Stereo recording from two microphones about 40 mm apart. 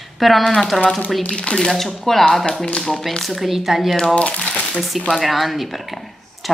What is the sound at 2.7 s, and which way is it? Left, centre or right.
Speech, centre.